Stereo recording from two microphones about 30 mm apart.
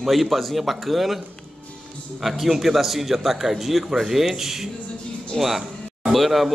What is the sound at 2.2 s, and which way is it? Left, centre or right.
A man's voice, centre.